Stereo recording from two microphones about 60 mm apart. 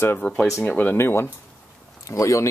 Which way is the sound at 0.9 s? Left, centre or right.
Left.